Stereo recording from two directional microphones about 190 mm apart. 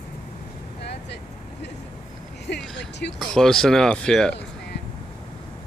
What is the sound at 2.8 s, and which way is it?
Speech, 65° left (ahead or behind).